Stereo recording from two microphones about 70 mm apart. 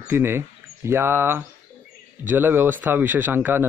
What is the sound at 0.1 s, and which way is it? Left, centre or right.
Speech, right.